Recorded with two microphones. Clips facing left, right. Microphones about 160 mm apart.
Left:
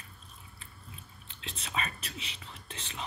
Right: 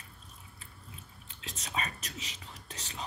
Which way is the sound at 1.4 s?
40° right (ahead or behind).